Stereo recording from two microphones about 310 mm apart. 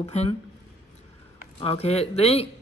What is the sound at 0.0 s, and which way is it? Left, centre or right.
Speech, centre.